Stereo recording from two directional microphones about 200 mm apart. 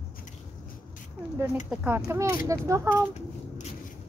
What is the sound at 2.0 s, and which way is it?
Speech, 15° right (ahead or behind).